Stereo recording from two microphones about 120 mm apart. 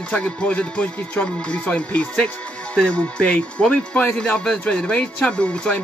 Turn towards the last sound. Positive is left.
turn(degrees=10)  # may be behind; listen again after turning